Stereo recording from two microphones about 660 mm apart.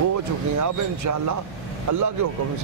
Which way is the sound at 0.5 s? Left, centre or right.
Right.